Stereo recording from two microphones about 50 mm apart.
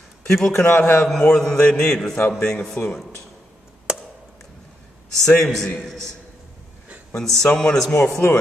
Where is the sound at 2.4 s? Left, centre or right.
Centre.